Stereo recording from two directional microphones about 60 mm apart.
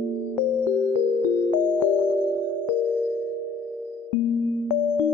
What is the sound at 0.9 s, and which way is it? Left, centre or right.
Music, right.